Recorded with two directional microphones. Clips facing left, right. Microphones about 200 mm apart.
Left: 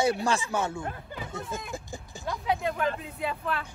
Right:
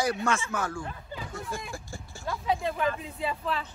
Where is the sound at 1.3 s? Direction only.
20° left (ahead or behind).